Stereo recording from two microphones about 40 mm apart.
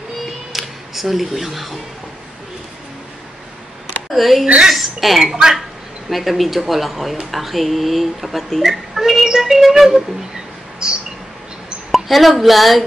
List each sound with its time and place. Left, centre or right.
0.5 s speech: centre
4.1 s a woman's voice: centre
5.2 s music: centre
6.0 s speech: centre
8.9 s music: centre
10.8 s mouse: right
11.9 s speech: centre